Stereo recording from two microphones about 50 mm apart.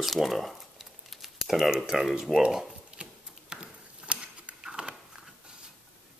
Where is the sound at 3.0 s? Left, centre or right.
Centre.